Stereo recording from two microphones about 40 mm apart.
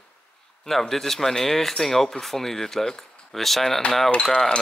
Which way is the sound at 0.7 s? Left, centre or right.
Centre.